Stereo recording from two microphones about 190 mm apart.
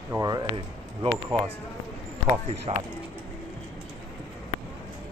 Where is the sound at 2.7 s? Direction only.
30° right (ahead or behind).